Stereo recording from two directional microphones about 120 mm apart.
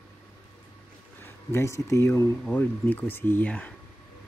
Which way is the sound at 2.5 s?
15° left (ahead or behind).